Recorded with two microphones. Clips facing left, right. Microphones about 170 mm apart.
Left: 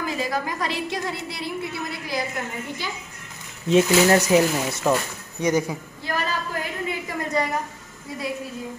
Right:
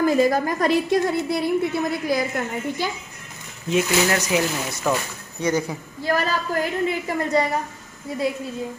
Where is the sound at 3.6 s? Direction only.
30° left (ahead or behind).